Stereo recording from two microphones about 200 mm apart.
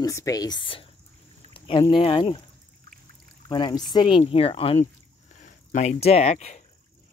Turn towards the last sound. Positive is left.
turn(degrees=35)  # may be behind; listen again after turning